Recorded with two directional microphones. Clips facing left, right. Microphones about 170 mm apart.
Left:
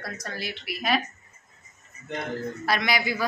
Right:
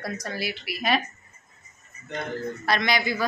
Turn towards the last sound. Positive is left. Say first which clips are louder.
# right 1 dB
turn(degrees=10)  # may be behind; listen again after turning